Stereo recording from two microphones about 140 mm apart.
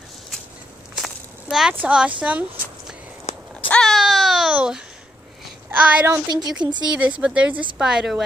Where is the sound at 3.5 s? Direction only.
10° left (ahead or behind).